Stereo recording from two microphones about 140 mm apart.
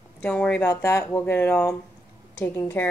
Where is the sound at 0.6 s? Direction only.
20° left (ahead or behind).